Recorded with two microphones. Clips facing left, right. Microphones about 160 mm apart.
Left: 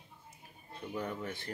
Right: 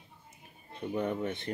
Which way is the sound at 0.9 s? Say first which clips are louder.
Right 6 dB; 20° right (ahead or behind).